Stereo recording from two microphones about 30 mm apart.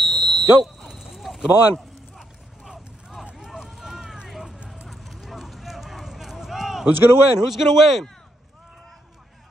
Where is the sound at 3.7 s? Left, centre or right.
Centre.